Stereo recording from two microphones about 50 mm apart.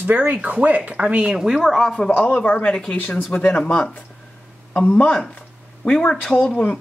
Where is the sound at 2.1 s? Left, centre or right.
Left.